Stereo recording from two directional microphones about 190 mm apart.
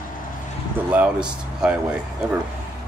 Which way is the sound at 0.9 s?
5° right (ahead or behind).